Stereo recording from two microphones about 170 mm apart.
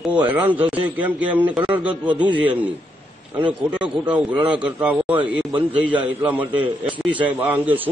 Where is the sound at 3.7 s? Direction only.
10° right (ahead or behind).